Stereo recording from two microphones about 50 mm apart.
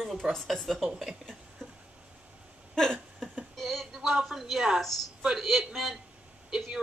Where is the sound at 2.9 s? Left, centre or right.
Right.